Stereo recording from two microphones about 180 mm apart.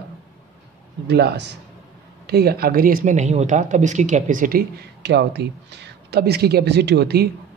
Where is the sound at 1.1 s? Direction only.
65° right (ahead or behind).